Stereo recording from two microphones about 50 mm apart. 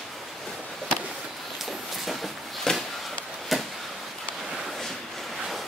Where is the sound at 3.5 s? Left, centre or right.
Centre.